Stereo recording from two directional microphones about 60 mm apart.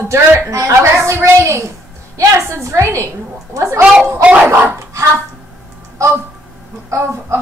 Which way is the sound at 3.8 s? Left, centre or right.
Centre.